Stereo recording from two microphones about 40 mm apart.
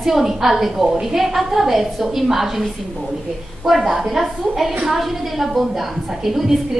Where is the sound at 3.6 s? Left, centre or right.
Centre.